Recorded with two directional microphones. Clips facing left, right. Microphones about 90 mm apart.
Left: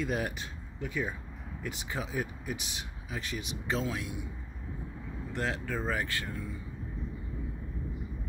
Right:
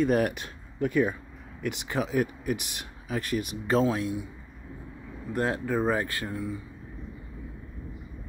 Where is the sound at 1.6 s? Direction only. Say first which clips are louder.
Right 8 dB; 70° right (ahead or behind); by 4.2 s 35° right (ahead or behind).